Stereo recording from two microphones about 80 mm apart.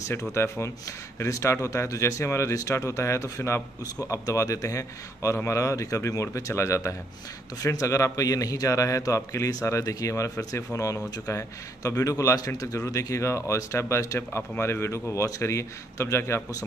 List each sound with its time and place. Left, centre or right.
0.1 s a man's voice: left